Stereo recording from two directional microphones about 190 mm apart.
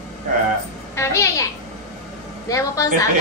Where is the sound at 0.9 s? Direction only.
15° left (ahead or behind).